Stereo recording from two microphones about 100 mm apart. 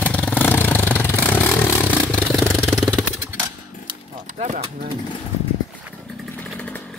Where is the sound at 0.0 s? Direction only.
15° left (ahead or behind).